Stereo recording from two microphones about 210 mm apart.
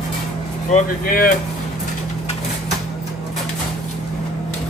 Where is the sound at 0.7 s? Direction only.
40° left (ahead or behind).